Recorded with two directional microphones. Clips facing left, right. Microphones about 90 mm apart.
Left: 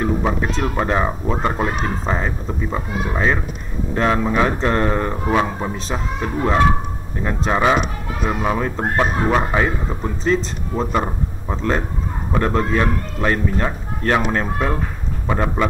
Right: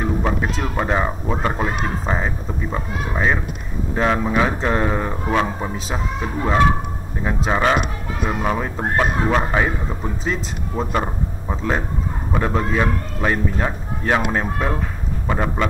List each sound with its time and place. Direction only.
0.2 s speech: centre (ahead or behind)
5.1 s speech: 5° left (ahead or behind)